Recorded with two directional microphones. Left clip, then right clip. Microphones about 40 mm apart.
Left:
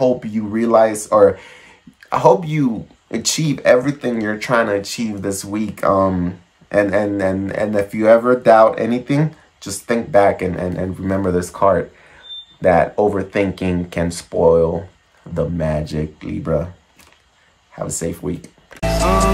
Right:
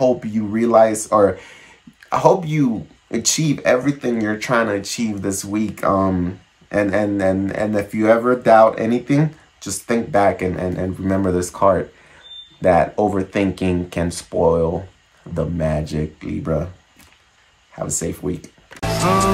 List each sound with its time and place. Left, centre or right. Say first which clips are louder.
0.0 s speech: left 1 dB; left
0.7 s speech: left 1 dB; centre; by 4.1 s left
4.1 s speech: left 1 dB; left
11.4 s speech: left 1 dB; centre
15.3 s speech: left 1 dB; centre
16.2 s speech: left 4 dB; left
17.7 s speech: left 1 dB; left
18.8 s music: left 1 dB; centre